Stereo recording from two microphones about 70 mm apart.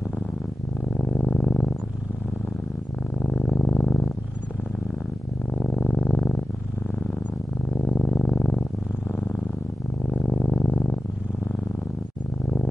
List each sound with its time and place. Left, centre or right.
0.8 s purr: centre
3.2 s purr: centre
5.8 s purr: centre
7.8 s purr: centre
10.2 s purr: centre
10.5 s purr: centre